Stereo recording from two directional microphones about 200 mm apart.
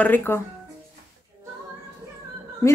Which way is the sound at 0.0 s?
10° left (ahead or behind).